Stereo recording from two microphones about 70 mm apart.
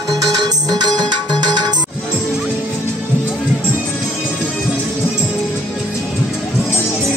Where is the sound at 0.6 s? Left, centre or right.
Right.